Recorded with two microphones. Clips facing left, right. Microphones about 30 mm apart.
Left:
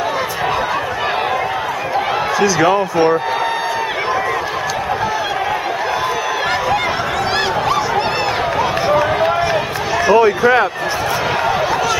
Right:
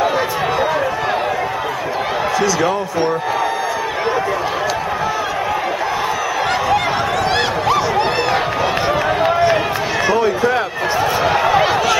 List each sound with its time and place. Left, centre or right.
7.3 s a sound: centre
8.8 s run: centre
10.1 s speech: centre